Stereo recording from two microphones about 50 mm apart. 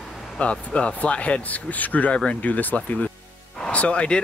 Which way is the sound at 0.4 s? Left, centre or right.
Left.